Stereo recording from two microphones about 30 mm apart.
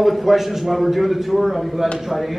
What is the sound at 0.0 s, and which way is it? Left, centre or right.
A man's voice, centre.